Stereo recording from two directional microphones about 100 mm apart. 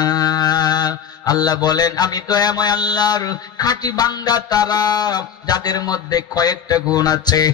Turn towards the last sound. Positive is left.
turn(degrees=40)  # may be behind; listen again after turning